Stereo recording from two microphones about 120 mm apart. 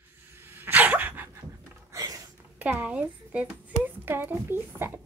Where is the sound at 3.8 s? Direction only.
15° right (ahead or behind).